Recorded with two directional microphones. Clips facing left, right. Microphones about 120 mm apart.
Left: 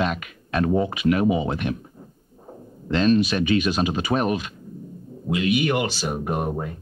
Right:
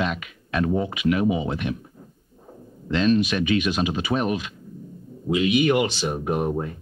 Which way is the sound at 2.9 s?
40° left (ahead or behind).